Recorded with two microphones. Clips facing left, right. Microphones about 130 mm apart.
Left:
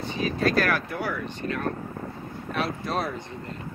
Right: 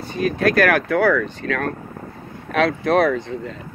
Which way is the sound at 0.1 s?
60° right (ahead or behind).